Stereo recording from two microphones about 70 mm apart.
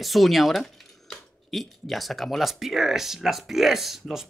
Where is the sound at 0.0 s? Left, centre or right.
Centre.